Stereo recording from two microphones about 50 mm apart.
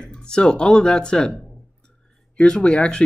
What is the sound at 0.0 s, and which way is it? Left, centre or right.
Speech, centre.